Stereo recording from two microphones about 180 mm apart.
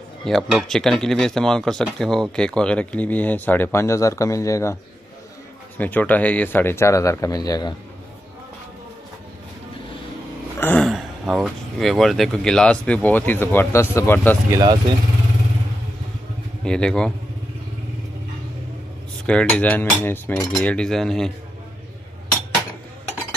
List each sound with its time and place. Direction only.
0.2 s speech: centre (ahead or behind); by 4.7 s 15° left (ahead or behind)
5.8 s speech: 10° left (ahead or behind)
10.6 s a sound: 10° left (ahead or behind)
10.9 s speech: centre (ahead or behind)
14.5 s speech: 25° right (ahead or behind)
16.6 s speech: 5° left (ahead or behind)
19.2 s speech: 5° left (ahead or behind)